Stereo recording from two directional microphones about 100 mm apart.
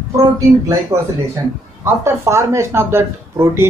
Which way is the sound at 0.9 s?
30° right (ahead or behind).